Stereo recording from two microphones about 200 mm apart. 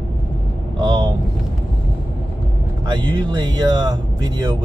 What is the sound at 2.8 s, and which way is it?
Speech, 20° right (ahead or behind).